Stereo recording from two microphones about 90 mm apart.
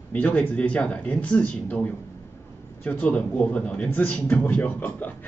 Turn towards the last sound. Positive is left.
turn(degrees=20)  # may be behind; listen again after turning